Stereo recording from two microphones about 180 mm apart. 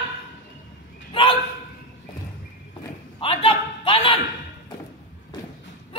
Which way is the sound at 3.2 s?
30° left (ahead or behind).